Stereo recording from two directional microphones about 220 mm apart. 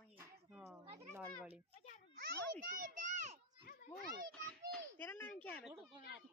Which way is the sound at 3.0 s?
35° right (ahead or behind).